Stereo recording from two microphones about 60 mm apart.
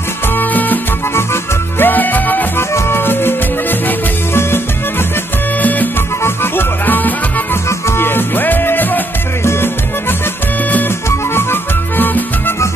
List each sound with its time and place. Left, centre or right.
0.4 s salsa music: left
1.1 s music: left
1.9 s music: left
5.6 s music: left
6.2 s music: left